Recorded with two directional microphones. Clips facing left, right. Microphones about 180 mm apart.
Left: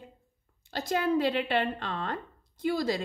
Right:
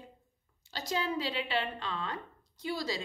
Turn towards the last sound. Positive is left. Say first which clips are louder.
# left 7 dB
turn(degrees=55)  # may be behind; listen again after turning